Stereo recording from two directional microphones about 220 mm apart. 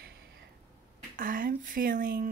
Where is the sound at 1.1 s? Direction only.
40° right (ahead or behind).